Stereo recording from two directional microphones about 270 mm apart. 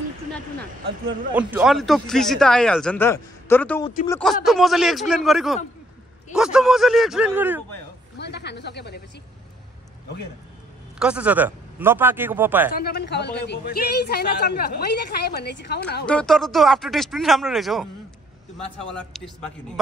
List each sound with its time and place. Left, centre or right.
1.3 s speech: centre
8.2 s speech: left
11.0 s speech: centre
12.7 s speech: left
16.1 s speech: centre
18.9 s speech: centre